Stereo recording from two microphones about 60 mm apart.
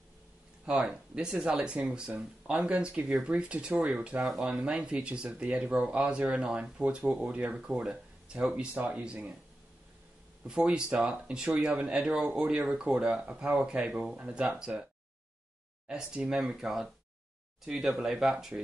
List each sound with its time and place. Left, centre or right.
0.7 s speech: centre
10.4 s speech: centre
15.9 s speech: centre